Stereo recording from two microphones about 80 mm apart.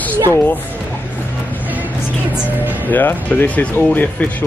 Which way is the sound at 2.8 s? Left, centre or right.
Left.